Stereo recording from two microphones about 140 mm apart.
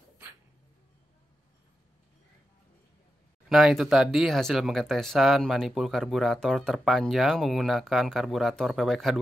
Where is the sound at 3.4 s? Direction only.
Centre (ahead or behind).